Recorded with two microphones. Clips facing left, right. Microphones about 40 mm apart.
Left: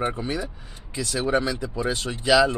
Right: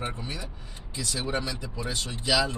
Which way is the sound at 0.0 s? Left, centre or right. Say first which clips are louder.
Left 8 dB; centre.